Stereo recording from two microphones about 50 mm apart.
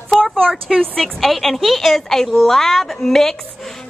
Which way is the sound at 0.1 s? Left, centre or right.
Centre.